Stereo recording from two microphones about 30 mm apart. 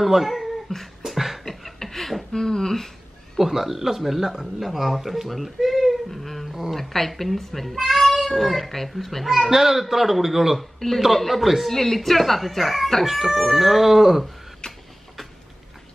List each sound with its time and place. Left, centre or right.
0.0 s speech: centre
0.7 s speech: centre
1.0 s beatboxing: centre
1.4 s beatboxing: centre
2.3 s speech: centre
3.3 s speech: centre
9.5 s speech: centre
10.6 s a man's voice: centre
11.7 s speech: centre
14.6 s a sound: left